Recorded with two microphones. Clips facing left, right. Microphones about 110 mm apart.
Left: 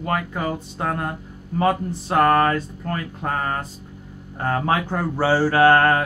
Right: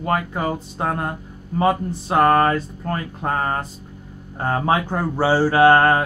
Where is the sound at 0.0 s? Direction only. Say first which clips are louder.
Right 2 dB; 25° right (ahead or behind).